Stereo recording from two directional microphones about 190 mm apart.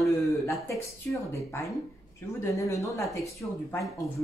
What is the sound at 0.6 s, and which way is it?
Speech, 15° left (ahead or behind).